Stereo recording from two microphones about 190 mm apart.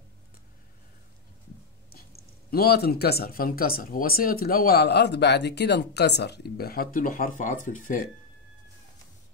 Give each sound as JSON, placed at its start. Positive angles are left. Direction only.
{"t": 2.5, "sound": "speech", "side_deg": 55}